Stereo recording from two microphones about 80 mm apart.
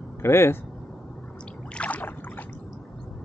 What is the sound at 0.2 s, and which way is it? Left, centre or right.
Speech, left.